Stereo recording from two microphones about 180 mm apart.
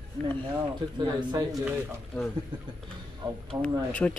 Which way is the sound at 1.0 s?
25° right (ahead or behind).